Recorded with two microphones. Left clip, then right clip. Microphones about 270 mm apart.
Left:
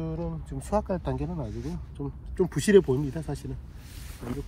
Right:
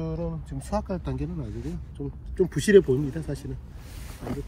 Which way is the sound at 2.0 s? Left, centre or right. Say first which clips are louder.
Right 1 dB; left.